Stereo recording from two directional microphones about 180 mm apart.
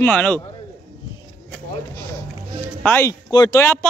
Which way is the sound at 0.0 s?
5° left (ahead or behind).